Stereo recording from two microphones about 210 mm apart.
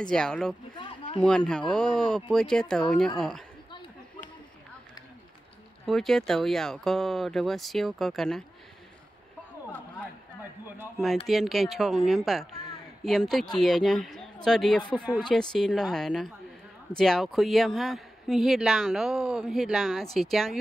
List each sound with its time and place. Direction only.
0.1 s speech: 5° left (ahead or behind)
0.7 s a sound: 25° left (ahead or behind)
1.2 s speech: 5° left (ahead or behind)
5.9 s speech: centre (ahead or behind)
11.2 s speech: centre (ahead or behind)